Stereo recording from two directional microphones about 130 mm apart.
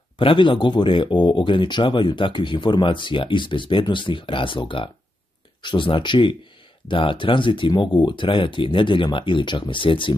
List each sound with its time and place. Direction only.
0.2 s speech: 40° left (ahead or behind)